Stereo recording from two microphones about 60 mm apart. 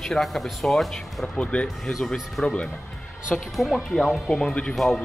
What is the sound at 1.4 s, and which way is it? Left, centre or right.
Speech, centre.